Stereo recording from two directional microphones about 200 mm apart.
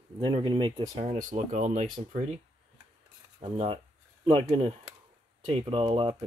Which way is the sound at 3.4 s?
30° right (ahead or behind).